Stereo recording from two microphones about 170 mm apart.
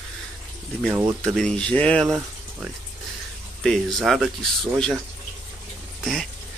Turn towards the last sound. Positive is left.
turn(degrees=0)  # may be behind; listen again after turning